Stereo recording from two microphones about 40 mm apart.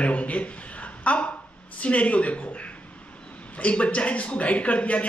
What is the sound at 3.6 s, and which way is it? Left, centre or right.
A man's voice, left.